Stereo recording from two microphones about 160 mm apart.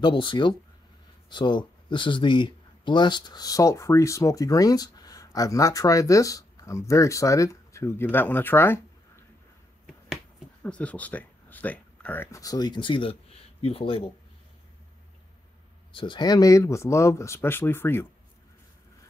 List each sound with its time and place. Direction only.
0.0 s speech: 30° left (ahead or behind); by 9.2 s 15° left (ahead or behind)
10.6 s speech: 10° left (ahead or behind); by 14.1 s 35° left (ahead or behind)
15.9 s speech: 30° left (ahead or behind); by 18.0 s 15° left (ahead or behind)